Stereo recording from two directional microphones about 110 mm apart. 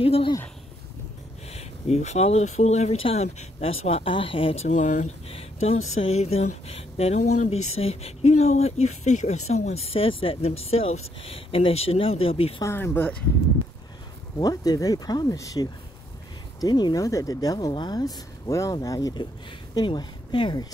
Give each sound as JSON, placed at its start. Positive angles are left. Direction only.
{"t": 0.0, "sound": "speech", "side_deg": 55}
{"t": 1.5, "sound": "speech", "side_deg": 70}
{"t": 4.1, "sound": "speech", "side_deg": 55}
{"t": 12.6, "sound": "speech", "side_deg": 20}
{"t": 14.4, "sound": "speech", "side_deg": 35}